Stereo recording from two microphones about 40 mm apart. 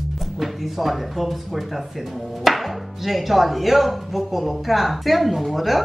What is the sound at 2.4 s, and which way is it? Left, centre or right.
Chopping, centre.